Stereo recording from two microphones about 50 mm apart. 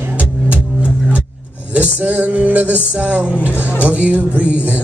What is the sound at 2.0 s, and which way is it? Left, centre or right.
Music, right.